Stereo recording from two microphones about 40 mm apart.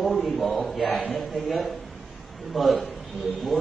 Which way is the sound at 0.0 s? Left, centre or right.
Centre.